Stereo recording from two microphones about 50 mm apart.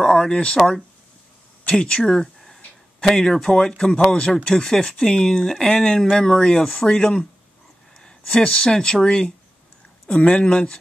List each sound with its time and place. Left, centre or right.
0.0 s a sound: centre
0.6 s speech: centre
1.7 s speech: centre
10.4 s speech: centre